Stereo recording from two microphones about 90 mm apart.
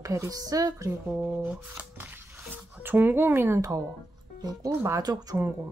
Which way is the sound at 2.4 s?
20° right (ahead or behind).